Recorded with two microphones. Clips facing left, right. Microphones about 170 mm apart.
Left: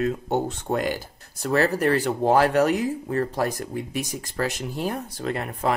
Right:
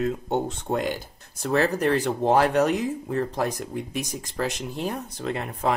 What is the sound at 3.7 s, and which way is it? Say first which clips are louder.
Speech: left 1 dB; 5° left (ahead or behind).